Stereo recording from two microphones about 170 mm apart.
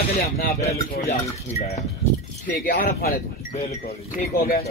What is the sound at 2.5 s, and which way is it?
Speech, 55° left (ahead or behind).